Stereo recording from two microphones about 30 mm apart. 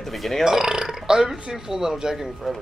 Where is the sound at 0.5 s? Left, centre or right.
Centre.